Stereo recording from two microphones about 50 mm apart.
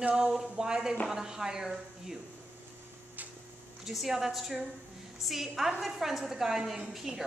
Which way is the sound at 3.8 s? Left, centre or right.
Centre.